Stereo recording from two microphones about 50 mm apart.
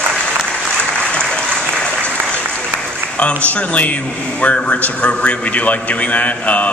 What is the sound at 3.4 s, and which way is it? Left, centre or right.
A man's voice, left.